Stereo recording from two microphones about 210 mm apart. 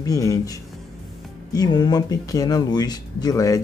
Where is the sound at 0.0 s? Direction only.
15° left (ahead or behind).